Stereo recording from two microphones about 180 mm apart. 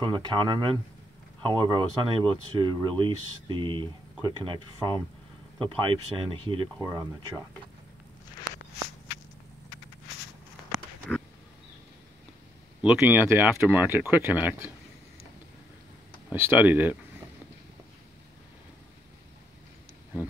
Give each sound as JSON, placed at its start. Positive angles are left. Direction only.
{"t": 0.0, "sound": "speech", "side_deg": -25}
{"t": 6.8, "sound": "speech", "side_deg": -15}
{"t": 11.1, "sound": "wild animals", "side_deg": 5}
{"t": 12.8, "sound": "speech", "side_deg": -10}
{"t": 16.3, "sound": "speech", "side_deg": -10}